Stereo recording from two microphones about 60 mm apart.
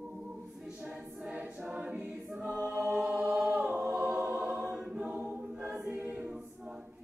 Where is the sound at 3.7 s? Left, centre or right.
Centre.